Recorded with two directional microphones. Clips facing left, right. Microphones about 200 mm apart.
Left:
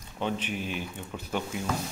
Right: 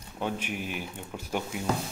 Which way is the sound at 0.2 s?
10° right (ahead or behind).